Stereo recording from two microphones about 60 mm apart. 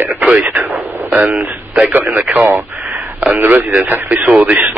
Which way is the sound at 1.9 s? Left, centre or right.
Right.